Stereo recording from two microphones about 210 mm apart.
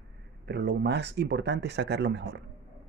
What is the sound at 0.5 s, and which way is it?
Speech, 55° right (ahead or behind).